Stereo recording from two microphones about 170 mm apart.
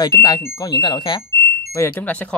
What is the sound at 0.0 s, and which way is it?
Speech, 20° left (ahead or behind).